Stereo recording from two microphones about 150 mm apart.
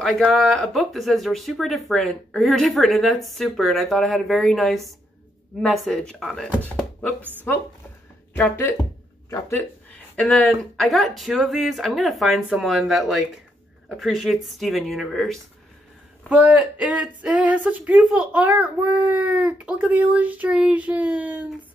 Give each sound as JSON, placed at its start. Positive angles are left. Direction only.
{"t": 0.0, "sound": "speech", "side_deg": 0}
{"t": 8.3, "sound": "speech", "side_deg": 15}
{"t": 10.1, "sound": "speech", "side_deg": 5}